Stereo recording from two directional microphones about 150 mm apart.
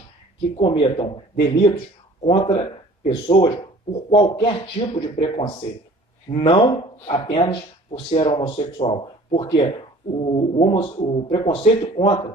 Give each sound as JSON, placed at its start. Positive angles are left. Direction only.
{"t": 0.6, "sound": "speech", "side_deg": 35}